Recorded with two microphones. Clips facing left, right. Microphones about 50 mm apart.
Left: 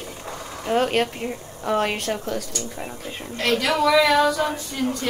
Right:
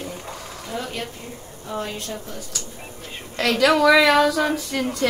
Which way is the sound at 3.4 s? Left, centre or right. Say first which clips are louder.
Right 4 dB; right.